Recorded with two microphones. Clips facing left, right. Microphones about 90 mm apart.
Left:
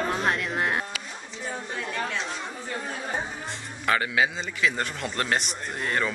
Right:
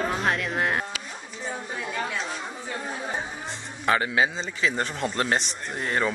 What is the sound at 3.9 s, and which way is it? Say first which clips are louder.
A man's voice: right 1 dB; 30° right (ahead or behind).